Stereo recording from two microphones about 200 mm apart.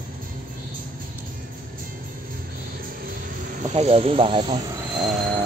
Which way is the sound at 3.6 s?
30° right (ahead or behind).